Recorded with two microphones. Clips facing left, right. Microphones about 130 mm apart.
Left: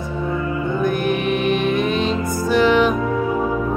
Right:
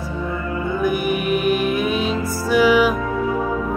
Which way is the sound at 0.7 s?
10° right (ahead or behind).